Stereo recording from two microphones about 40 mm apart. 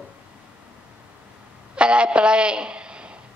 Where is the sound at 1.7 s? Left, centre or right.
Right.